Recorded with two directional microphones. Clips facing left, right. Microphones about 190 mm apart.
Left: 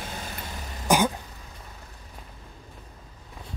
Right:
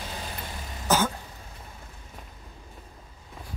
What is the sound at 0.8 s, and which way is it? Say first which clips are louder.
Throat clearing: left 2 dB; 15° left (ahead or behind).